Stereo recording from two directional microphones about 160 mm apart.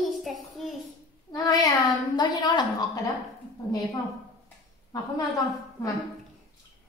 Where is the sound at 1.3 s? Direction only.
20° left (ahead or behind).